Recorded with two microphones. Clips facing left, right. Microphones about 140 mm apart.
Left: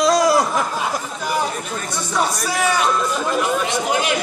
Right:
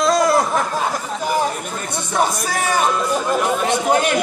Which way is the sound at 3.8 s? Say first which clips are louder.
Right 6 dB; 45° right (ahead or behind).